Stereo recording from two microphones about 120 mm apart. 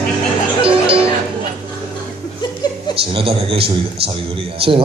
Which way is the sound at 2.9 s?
50° right (ahead or behind).